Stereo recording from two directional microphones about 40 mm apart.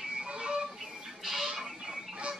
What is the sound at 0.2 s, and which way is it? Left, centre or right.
Vehicle, right.